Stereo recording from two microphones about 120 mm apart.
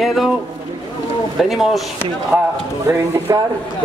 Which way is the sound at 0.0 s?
Centre (ahead or behind).